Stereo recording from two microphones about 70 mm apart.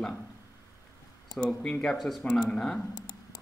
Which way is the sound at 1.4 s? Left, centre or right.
Centre.